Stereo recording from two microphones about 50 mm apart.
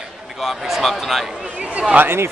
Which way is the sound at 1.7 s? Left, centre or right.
Right.